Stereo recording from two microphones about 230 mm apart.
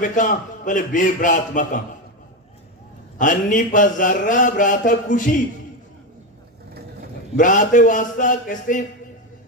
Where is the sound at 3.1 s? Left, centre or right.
Left.